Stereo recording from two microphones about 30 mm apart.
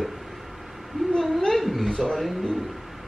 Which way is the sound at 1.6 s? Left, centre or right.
Centre.